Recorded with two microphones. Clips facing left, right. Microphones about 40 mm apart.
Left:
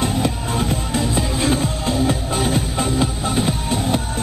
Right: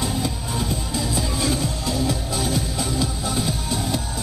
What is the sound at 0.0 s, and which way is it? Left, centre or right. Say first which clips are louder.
Music: left 5 dB; left.